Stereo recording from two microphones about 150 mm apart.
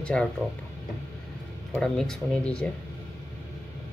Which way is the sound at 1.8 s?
5° left (ahead or behind).